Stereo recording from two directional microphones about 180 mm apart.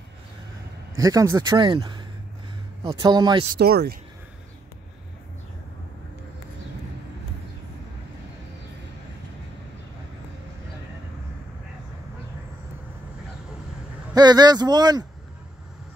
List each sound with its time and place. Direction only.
0.9 s speech: 20° right (ahead or behind)
3.5 s speech: 60° right (ahead or behind)
14.1 s a man's voice: 25° right (ahead or behind)